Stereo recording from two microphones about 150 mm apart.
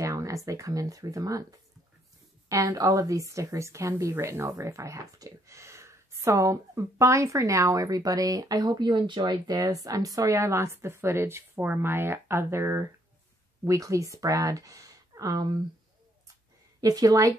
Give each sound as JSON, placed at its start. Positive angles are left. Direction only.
{"t": 0.0, "sound": "a sound", "side_deg": -20}
{"t": 0.5, "sound": "a woman's voice", "side_deg": -20}
{"t": 2.5, "sound": "a woman's voice", "side_deg": -25}
{"t": 16.8, "sound": "a woman's voice", "side_deg": -25}